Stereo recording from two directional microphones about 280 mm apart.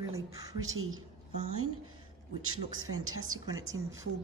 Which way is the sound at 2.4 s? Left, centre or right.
Right.